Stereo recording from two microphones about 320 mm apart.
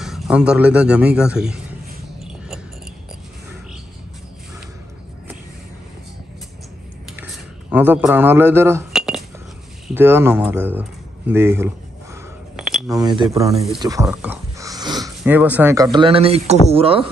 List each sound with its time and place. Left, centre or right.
0.0 s a man's voice: centre
7.7 s speech: centre